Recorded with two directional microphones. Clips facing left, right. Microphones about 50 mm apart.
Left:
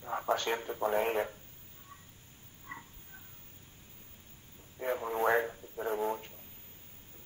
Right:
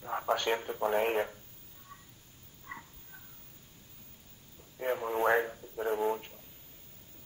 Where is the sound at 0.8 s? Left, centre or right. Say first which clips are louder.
Right 1 dB; right.